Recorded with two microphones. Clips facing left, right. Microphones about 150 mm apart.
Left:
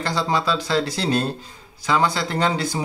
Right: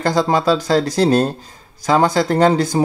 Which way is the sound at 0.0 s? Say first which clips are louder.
Right 7 dB; 45° right (ahead or behind).